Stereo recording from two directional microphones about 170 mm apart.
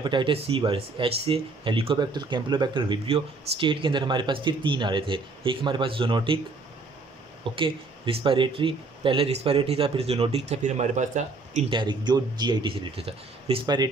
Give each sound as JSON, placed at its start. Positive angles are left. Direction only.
{"t": 0.0, "sound": "speech", "side_deg": -30}
{"t": 7.4, "sound": "speech", "side_deg": -30}
{"t": 11.7, "sound": "speech", "side_deg": -25}